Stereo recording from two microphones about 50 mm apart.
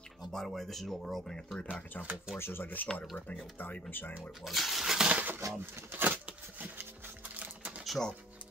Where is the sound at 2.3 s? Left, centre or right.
Left.